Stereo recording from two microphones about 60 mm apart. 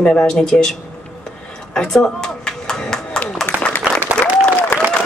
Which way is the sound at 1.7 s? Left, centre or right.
Centre.